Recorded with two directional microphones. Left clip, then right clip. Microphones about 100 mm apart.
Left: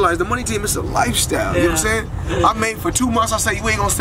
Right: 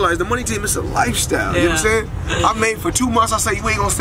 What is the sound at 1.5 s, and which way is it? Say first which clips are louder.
Speech: right 1 dB; 35° right (ahead or behind).